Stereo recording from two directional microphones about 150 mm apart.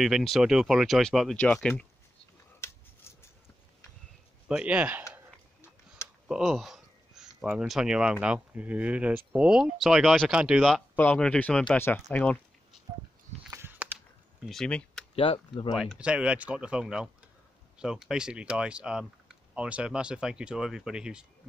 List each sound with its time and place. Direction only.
0.0 s speech: centre (ahead or behind)
2.6 s a sound: 15° left (ahead or behind)
4.5 s speech: 5° right (ahead or behind)
6.2 s speech: 5° right (ahead or behind)
11.0 s speech: 10° left (ahead or behind)
13.5 s a sound: 15° right (ahead or behind)
14.4 s speech: 5° left (ahead or behind)
15.1 s speech: 40° left (ahead or behind)
15.7 s speech: 5° right (ahead or behind)